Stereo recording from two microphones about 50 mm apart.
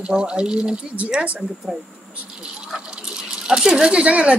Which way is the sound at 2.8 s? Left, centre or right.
Centre.